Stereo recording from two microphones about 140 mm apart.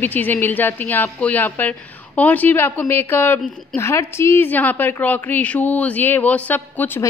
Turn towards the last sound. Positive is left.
turn(degrees=15)  # may be behind; listen again after turning